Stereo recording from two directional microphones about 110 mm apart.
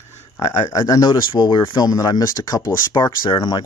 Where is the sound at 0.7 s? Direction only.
30° left (ahead or behind).